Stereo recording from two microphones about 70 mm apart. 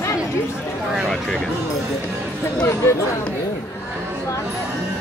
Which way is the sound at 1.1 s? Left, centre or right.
Centre.